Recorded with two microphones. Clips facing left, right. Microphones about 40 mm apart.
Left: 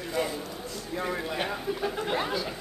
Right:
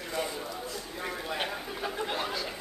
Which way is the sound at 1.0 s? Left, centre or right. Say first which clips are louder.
Left 6 dB; centre.